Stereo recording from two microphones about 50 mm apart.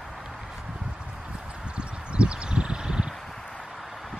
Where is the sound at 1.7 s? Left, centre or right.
Right.